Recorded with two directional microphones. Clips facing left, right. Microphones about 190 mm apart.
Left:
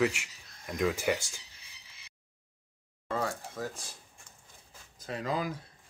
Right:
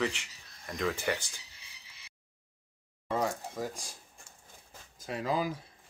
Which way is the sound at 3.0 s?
15° right (ahead or behind).